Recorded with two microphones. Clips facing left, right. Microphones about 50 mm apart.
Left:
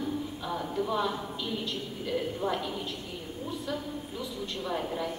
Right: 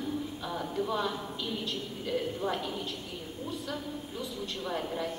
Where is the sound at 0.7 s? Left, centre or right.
Centre.